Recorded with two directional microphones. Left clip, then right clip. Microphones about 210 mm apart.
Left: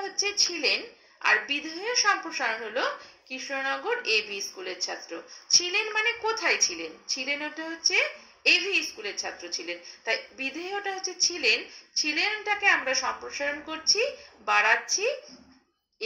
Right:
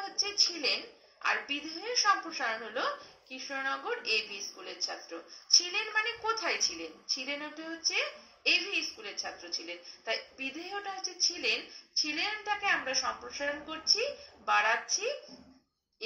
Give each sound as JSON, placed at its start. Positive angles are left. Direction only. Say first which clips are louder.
{"t": 0.0, "sound": "a woman's voice", "louder": "left 4 dB", "side_deg": 35}